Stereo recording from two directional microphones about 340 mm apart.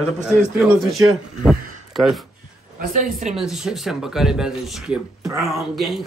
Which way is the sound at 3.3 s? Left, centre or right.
Centre.